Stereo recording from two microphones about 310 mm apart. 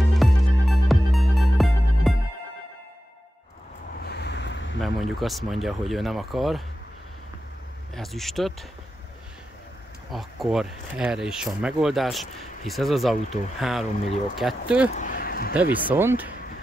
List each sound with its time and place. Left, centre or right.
0.2 s music: centre
4.0 s vehicle: left
4.8 s speech: centre
7.9 s speech: centre
10.1 s speech: centre
15.0 s speech: left
15.7 s speech: centre